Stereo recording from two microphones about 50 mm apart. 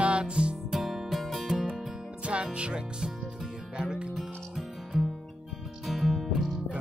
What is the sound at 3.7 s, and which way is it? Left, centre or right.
Music, centre.